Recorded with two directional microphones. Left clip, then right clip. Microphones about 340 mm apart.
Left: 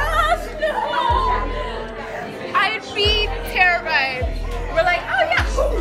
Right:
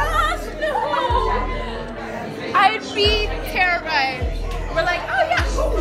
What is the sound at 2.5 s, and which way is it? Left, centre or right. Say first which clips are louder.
Music: right 3 dB; centre.